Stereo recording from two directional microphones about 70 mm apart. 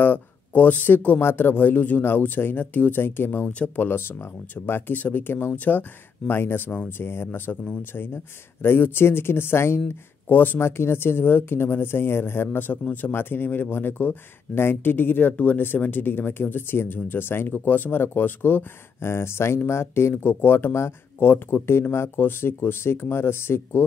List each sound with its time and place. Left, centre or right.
0.0 s speech: left